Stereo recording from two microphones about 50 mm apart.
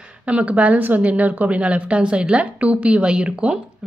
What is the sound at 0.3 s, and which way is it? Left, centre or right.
A woman's voice, right.